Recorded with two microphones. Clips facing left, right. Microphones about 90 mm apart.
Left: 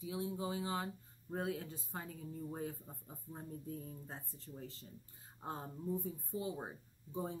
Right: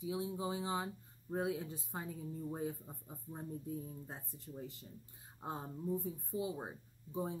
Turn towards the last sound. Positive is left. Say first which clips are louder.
# right 2 dB
turn(degrees=-10)  # may be behind; listen again after turning